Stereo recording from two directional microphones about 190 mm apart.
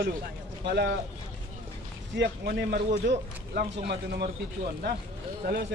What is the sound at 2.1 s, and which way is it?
Speech, 65° right (ahead or behind).